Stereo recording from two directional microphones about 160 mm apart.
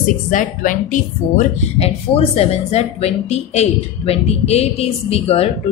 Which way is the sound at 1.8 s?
40° left (ahead or behind).